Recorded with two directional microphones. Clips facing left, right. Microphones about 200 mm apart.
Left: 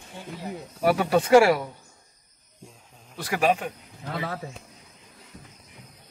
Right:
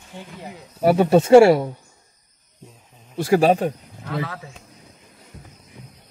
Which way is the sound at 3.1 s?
30° right (ahead or behind).